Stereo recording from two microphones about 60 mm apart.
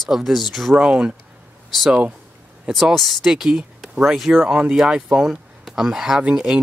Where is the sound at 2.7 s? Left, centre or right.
Centre.